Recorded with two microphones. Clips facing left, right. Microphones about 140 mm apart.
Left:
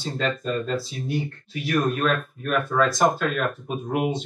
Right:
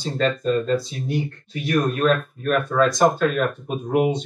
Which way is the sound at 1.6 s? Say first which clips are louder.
Right 3 dB; centre (ahead or behind).